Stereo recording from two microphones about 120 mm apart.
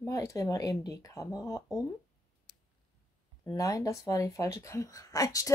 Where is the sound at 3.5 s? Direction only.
25° left (ahead or behind).